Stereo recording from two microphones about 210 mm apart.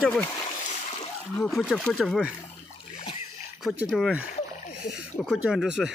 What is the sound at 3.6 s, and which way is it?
Speech, centre (ahead or behind).